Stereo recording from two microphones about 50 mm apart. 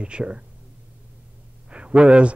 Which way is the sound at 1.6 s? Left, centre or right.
Right.